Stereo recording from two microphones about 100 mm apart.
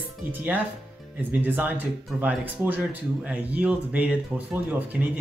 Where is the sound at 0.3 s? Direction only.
15° right (ahead or behind).